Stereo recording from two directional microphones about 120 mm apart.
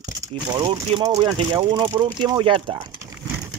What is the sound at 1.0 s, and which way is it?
Speech, 30° right (ahead or behind).